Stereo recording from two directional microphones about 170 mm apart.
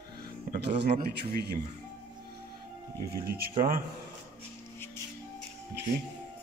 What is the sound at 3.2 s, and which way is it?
Speech, 65° right (ahead or behind).